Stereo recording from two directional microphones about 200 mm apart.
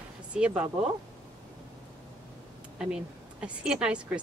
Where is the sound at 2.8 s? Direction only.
5° right (ahead or behind).